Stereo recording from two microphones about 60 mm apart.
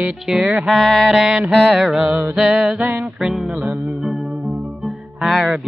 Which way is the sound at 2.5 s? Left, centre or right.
Centre.